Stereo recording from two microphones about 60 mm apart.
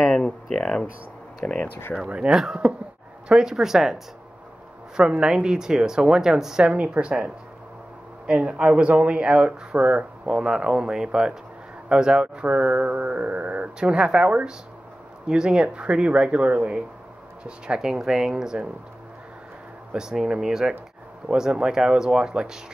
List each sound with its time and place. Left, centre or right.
0.1 s speech: centre
1.4 s speech: left
2.0 s speech: centre
13.7 s speech: centre
19.9 s speech: centre